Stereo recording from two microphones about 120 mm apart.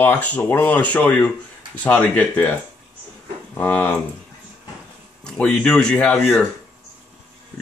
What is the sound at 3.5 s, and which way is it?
Speech, 15° left (ahead or behind).